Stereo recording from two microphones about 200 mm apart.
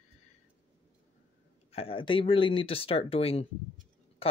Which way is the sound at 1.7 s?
25° left (ahead or behind).